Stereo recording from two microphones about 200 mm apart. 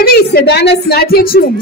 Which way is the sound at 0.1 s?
55° left (ahead or behind).